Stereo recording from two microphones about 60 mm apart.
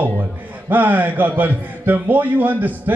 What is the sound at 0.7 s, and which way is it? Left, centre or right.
A man's voice, right.